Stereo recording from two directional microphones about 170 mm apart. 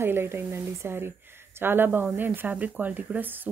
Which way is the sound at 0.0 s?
15° right (ahead or behind).